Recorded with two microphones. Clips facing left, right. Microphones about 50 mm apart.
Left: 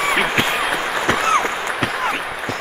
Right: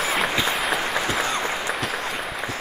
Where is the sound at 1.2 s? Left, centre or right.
Left.